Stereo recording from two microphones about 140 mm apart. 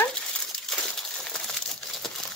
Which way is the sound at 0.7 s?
5° left (ahead or behind).